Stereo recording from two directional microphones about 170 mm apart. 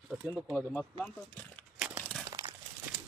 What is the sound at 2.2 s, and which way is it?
Crumpling, 20° right (ahead or behind).